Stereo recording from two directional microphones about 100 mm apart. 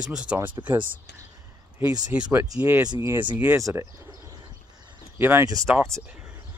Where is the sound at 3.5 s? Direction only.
30° right (ahead or behind).